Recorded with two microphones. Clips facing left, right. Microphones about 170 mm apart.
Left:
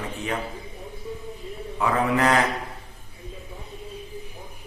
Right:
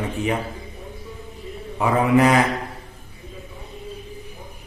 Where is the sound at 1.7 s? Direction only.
15° right (ahead or behind).